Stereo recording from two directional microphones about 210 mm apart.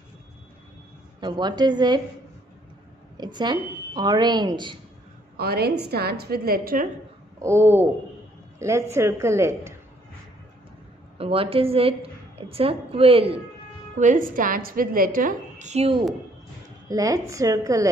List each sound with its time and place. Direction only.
1.2 s speech: 20° right (ahead or behind)
3.2 s speech: 20° right (ahead or behind)
5.4 s a woman's voice: 50° right (ahead or behind)
7.3 s a man's voice: 10° right (ahead or behind)
11.1 s a woman's voice: 25° right (ahead or behind)
13.9 s a woman's voice: 35° right (ahead or behind)
16.9 s a man's voice: 15° right (ahead or behind)